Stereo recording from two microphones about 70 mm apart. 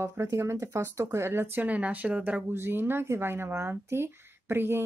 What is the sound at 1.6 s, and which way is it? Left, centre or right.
Speech, right.